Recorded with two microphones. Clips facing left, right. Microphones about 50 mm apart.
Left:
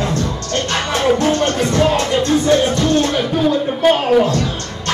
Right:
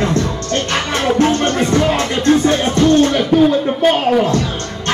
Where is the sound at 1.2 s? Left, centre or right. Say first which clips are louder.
Right 2 dB; right.